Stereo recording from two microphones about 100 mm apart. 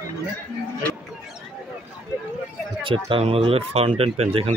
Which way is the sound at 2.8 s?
60° right (ahead or behind).